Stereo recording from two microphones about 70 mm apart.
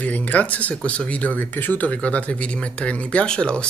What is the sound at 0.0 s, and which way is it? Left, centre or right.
Speech, left.